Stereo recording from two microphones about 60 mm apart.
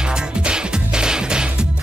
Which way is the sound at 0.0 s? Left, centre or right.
Centre.